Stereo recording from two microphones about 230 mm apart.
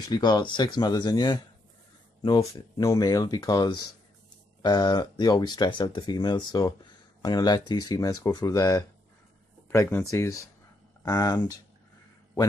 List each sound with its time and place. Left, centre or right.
0.0 s speech: centre